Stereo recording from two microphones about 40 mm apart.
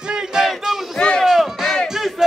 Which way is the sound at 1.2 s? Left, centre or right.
Centre.